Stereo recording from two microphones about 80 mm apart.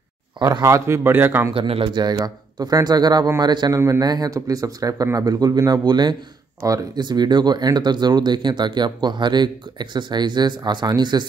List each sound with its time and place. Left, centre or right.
0.4 s speech: right
0.7 s speech: right
1.1 s speech: right
1.5 s a man's voice: right
6.6 s a man's voice: right
7.0 s speech: right